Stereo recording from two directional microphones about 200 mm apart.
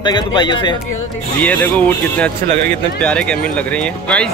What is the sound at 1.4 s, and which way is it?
Speech, 5° left (ahead or behind).